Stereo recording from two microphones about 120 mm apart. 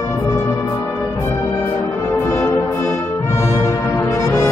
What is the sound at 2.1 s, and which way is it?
Brass instrument, 20° left (ahead or behind).